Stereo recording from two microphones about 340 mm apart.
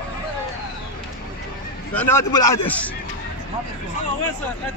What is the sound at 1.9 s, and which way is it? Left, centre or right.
Speech, centre.